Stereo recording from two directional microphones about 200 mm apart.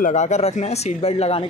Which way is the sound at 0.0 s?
35° left (ahead or behind).